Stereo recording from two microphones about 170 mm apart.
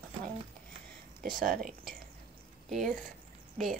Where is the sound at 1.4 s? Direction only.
60° right (ahead or behind).